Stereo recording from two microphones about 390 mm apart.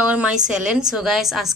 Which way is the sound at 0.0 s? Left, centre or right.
Centre.